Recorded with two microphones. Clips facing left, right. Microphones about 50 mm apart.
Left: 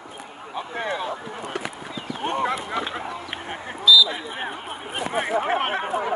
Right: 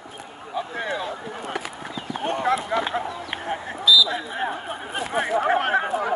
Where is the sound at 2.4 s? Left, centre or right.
Centre.